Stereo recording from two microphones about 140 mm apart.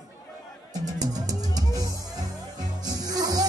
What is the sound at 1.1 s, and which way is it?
Music, 25° right (ahead or behind).